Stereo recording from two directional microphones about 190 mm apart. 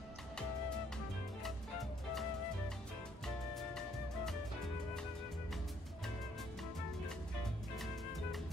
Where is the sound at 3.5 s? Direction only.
Centre (ahead or behind).